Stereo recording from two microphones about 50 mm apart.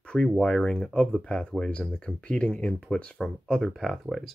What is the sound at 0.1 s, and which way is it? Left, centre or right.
Speech, centre.